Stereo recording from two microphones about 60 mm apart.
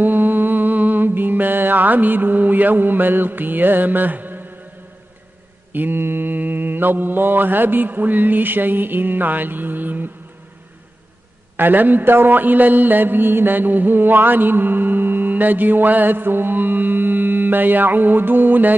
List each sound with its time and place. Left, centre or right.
0.0 s mantra: right
5.7 s mantra: right
11.5 s mantra: right